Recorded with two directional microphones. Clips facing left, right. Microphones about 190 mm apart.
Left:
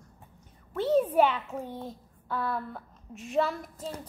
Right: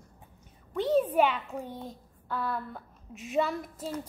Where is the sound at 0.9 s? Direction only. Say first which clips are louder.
Left 1 dB; 10° left (ahead or behind).